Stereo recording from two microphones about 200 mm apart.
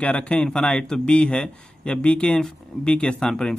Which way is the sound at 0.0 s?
5° left (ahead or behind).